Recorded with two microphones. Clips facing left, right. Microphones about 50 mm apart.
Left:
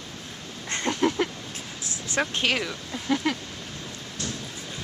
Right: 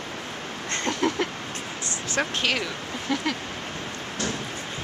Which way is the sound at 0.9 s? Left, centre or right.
Centre.